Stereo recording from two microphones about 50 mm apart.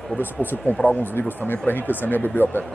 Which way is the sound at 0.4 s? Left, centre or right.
Centre.